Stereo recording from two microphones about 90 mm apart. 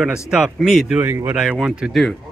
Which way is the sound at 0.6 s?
Centre (ahead or behind).